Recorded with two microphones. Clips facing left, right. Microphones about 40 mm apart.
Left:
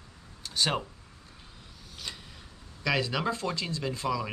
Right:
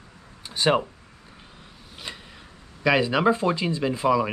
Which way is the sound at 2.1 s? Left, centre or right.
Right.